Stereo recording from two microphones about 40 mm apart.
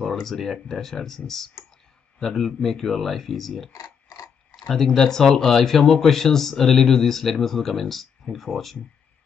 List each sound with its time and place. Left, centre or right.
0.0 s speech: centre